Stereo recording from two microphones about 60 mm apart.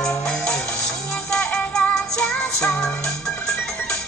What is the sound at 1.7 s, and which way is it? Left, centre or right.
Music, centre.